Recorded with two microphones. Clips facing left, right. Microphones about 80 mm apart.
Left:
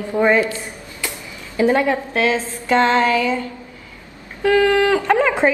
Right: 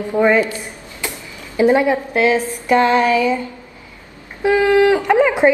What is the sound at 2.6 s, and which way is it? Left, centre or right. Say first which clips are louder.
Speech: right 1 dB; centre.